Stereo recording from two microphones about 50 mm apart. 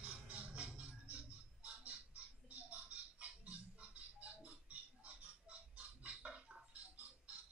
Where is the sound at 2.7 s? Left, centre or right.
Right.